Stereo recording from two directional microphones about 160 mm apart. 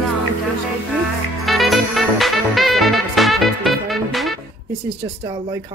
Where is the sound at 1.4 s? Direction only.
Centre (ahead or behind).